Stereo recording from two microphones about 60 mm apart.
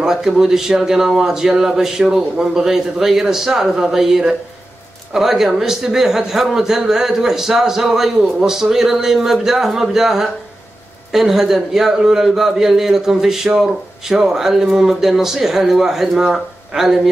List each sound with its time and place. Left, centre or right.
0.0 s a man's voice: centre